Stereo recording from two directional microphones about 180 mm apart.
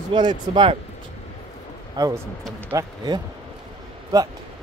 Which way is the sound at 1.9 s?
20° right (ahead or behind).